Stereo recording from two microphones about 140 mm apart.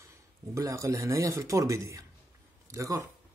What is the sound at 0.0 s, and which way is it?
Speech, 25° right (ahead or behind).